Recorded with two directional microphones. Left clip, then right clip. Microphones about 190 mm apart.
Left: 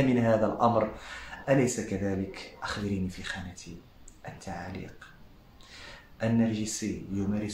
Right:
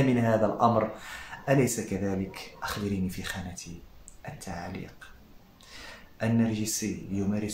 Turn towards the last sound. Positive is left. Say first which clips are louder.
# right 1 dB
turn(degrees=-10)  # may be behind; listen again after turning